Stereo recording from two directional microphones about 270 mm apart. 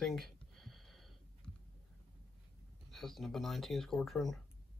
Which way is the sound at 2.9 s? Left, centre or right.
Centre.